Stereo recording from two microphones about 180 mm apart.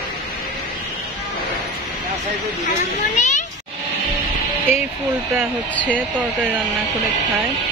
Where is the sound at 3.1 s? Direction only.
40° left (ahead or behind).